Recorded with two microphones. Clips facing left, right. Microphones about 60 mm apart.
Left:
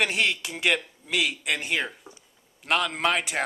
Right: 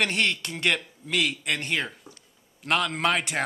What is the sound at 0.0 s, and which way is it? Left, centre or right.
Speech, centre.